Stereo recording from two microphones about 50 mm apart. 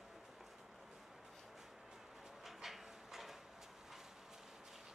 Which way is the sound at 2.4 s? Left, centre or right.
Centre.